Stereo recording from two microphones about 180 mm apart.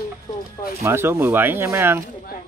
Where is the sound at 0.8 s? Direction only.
15° right (ahead or behind).